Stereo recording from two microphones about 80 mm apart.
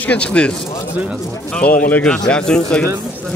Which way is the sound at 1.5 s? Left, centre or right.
Centre.